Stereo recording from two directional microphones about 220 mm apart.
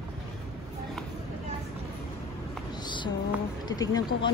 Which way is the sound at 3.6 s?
15° left (ahead or behind).